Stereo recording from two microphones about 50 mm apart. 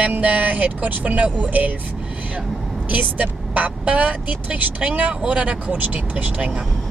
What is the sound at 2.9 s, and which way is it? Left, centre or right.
Speech, right.